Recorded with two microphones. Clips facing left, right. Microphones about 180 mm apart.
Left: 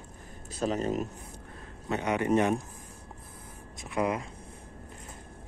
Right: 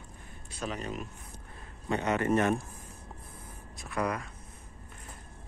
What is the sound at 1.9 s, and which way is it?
Speech, 10° left (ahead or behind).